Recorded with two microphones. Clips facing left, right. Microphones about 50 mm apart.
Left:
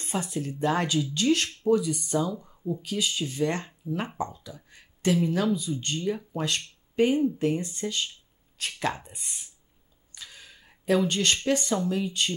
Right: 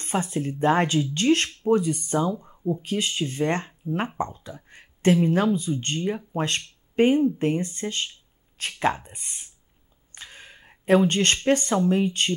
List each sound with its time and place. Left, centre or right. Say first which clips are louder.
0.0 s speech: right 4 dB; right
10.1 s a sound: right 3 dB; right
11.3 s speech: right 4 dB; right